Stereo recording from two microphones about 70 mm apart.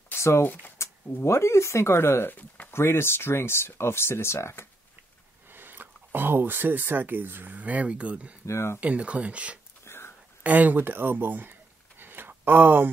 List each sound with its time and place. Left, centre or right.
0.1 s shuffling cards: left
0.7 s speech: left
2.3 s speech: left
2.7 s speech: left
5.5 s speech: right
8.5 s speech: left
8.7 s speech: centre
9.8 s a sound: left
10.4 s speech: right
12.0 s a sound: right